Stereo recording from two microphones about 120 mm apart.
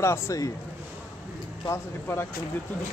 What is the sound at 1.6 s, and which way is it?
Speech, 20° left (ahead or behind).